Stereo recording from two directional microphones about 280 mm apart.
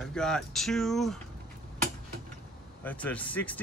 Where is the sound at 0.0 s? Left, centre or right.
Centre.